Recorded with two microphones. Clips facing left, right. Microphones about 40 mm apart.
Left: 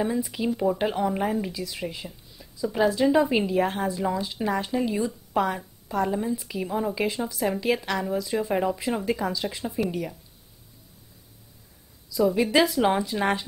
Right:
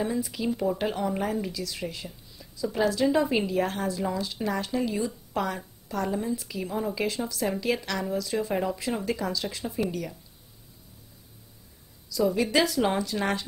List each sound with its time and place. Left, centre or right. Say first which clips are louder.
0.0 s a woman's voice: left 2 dB; centre
12.1 s a woman's voice: left 3 dB; centre